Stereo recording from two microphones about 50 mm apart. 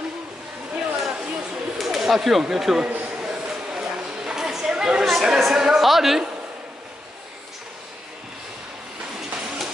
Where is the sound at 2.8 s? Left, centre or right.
Right.